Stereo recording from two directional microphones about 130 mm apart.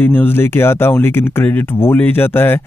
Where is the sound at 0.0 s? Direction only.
15° left (ahead or behind).